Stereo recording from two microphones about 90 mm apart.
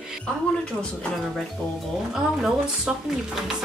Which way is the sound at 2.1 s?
5° right (ahead or behind).